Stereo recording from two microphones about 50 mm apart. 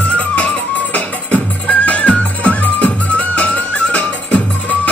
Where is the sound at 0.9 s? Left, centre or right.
Left.